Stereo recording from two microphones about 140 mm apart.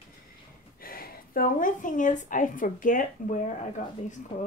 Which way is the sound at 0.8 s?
90° left.